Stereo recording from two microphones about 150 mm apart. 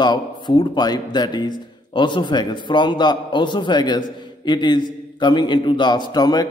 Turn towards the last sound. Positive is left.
turn(degrees=25)  # may be behind; listen again after turning